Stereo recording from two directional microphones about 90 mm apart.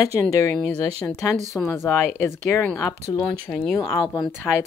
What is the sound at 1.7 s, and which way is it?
Speech, 25° left (ahead or behind).